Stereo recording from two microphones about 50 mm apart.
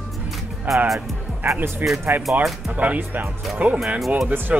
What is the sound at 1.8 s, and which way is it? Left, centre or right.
Speech, right.